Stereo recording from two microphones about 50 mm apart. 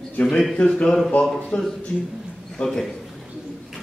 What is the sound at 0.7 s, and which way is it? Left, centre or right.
A man's voice, centre.